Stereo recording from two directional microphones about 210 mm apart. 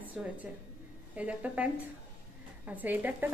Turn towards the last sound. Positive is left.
turn(degrees=-10)  # may be behind; listen again after turning